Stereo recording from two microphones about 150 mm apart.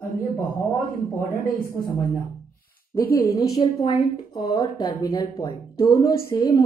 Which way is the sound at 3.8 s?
30° left (ahead or behind).